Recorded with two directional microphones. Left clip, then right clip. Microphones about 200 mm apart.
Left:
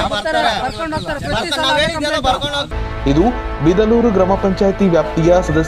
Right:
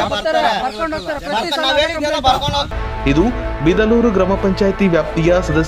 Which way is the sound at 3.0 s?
10° right (ahead or behind).